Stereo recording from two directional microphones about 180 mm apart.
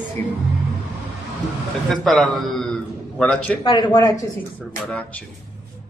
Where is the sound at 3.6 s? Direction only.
25° left (ahead or behind).